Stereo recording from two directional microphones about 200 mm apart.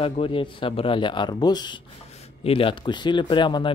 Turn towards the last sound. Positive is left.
turn(degrees=25)  # may be behind; listen again after turning